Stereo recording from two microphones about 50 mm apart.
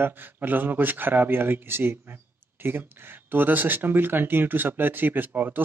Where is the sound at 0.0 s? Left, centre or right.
Right.